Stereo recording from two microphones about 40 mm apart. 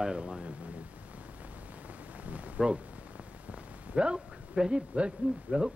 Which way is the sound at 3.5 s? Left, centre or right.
Right.